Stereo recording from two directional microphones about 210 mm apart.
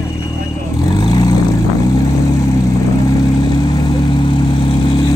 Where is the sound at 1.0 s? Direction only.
20° left (ahead or behind).